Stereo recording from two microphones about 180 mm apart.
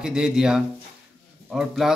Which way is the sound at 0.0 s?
5° right (ahead or behind).